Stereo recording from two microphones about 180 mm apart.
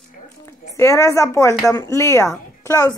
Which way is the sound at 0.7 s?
15° left (ahead or behind).